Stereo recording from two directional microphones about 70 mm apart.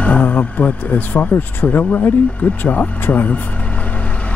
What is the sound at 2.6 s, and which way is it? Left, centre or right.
Speech, left.